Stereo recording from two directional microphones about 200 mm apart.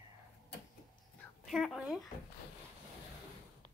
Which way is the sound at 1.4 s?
Centre (ahead or behind).